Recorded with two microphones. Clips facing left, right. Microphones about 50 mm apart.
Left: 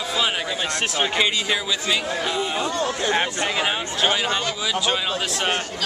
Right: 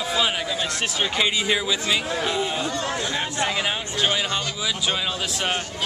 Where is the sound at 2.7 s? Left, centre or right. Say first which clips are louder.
Left 4 dB; left.